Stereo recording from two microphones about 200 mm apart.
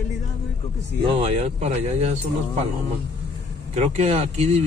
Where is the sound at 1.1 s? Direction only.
30° right (ahead or behind).